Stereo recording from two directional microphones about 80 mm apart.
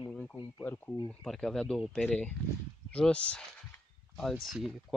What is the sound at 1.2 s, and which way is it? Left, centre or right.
Speech, centre.